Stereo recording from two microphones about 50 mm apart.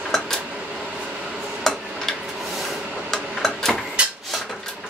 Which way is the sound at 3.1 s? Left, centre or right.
Centre.